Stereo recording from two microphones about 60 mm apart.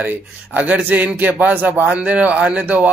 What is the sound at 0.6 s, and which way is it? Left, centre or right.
A man's voice, right.